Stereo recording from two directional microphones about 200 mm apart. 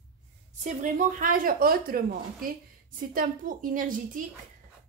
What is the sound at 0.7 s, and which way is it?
A woman's voice, 40° right (ahead or behind).